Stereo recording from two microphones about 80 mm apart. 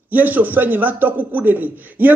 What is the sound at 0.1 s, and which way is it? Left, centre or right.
A man's voice, right.